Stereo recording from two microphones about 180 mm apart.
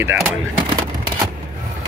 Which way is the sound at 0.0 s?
10° right (ahead or behind).